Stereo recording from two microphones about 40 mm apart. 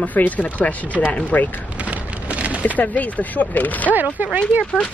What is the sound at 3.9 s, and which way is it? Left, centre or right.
Speech, right.